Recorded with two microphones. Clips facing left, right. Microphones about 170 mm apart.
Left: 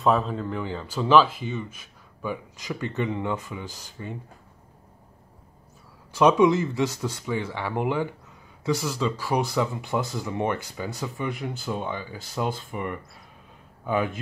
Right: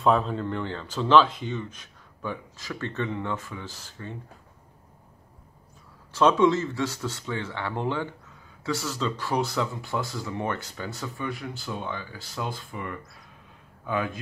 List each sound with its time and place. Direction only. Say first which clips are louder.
0.0 s speech: even; centre (ahead or behind)
6.1 s speech: left 2 dB; 15° left (ahead or behind)